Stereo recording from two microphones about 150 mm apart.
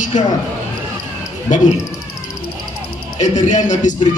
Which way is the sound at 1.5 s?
55° left (ahead or behind).